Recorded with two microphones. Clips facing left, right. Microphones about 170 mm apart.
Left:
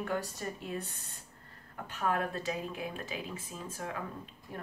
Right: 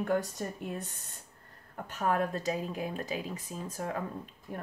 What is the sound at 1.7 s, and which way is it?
A woman's voice, 40° right (ahead or behind).